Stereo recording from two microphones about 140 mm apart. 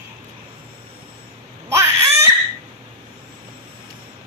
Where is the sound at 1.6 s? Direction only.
20° right (ahead or behind).